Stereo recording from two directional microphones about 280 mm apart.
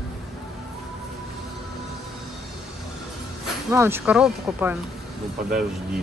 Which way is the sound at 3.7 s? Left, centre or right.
Centre.